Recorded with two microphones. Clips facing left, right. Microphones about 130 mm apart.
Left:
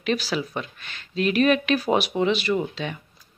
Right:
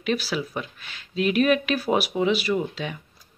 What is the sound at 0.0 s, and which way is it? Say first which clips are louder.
Speech: left 1 dB; 5° right (ahead or behind).